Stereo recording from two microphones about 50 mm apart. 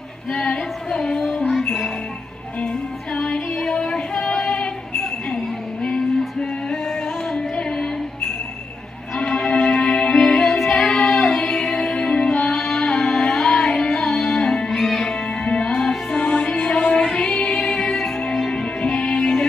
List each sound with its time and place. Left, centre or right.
0.3 s female singing: centre
1.6 s music: centre
3.2 s female singing: left
7.3 s music: left; by 15.1 s centre
15.4 s music: left
17.3 s music: centre